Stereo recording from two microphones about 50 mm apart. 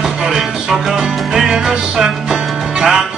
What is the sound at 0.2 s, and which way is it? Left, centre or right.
Music, centre.